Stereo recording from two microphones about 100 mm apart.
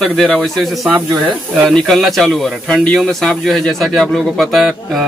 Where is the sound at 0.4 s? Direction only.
Centre (ahead or behind).